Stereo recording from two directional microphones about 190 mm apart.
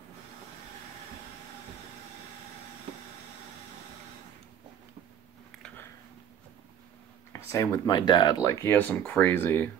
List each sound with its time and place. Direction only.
7.3 s speech: 15° left (ahead or behind)